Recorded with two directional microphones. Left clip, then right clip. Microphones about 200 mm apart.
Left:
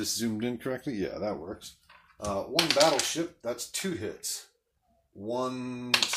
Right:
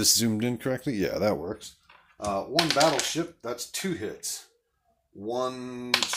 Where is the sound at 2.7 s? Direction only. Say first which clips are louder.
Left 1 dB; 45° right (ahead or behind).